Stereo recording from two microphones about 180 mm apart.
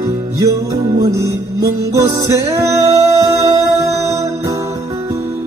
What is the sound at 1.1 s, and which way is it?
Music, 15° right (ahead or behind).